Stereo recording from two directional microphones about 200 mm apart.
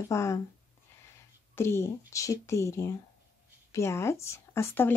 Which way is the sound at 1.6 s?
10° left (ahead or behind).